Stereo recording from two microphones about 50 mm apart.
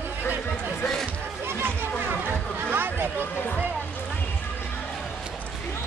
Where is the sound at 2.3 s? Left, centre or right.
Right.